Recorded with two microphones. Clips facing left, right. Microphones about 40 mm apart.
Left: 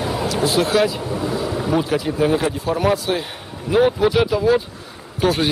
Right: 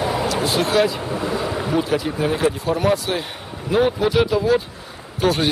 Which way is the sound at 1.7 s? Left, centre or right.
Centre.